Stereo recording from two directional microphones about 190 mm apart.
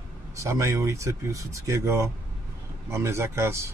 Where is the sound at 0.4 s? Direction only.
15° right (ahead or behind).